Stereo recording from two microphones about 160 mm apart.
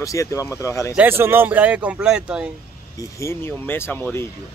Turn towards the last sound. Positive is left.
turn(degrees=15)  # may be behind; listen again after turning